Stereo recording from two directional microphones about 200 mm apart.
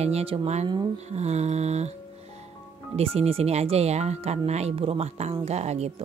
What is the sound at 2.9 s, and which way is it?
Speech, 30° right (ahead or behind).